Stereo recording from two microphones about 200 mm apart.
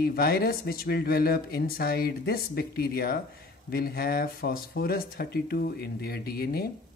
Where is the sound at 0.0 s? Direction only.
50° left (ahead or behind).